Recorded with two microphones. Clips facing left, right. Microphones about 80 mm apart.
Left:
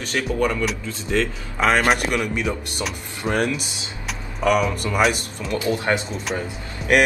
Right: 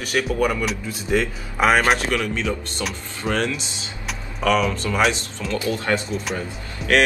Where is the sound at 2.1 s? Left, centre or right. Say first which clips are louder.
Even; centre.